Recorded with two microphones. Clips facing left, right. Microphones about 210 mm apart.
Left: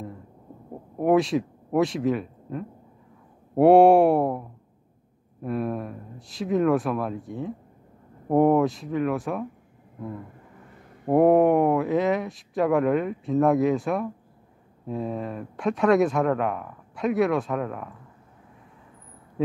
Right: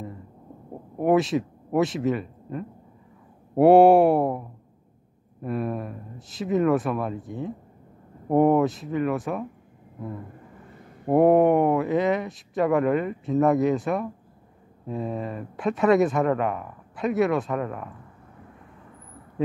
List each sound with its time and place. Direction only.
0.9 s speech: centre (ahead or behind)
11.1 s speech: centre (ahead or behind)